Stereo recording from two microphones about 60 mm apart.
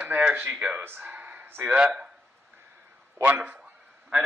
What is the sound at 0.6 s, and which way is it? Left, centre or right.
Speech, right.